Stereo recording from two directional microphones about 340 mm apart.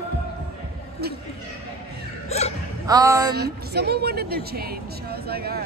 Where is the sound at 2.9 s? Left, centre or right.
Centre.